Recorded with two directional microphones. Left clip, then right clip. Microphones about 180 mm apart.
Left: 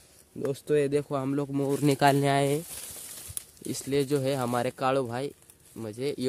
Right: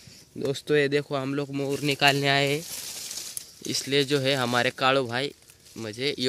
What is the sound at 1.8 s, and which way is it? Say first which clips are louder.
Speech: right 1 dB; 30° left (ahead or behind).